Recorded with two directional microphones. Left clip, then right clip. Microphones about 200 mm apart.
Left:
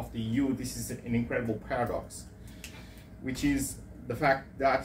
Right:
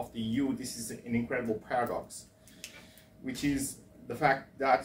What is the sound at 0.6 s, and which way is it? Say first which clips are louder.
Speech: left 2 dB; 15° right (ahead or behind).